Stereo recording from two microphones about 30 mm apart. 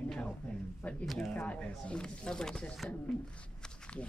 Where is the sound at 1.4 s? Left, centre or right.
Left.